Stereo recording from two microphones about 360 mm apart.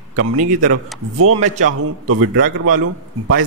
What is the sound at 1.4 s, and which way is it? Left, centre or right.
Speech, centre.